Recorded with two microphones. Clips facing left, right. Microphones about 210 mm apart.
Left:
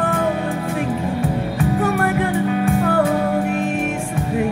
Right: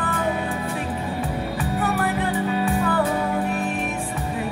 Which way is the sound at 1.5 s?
45° left (ahead or behind).